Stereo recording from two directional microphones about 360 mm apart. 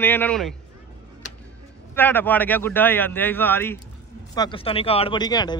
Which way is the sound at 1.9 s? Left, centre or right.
Centre.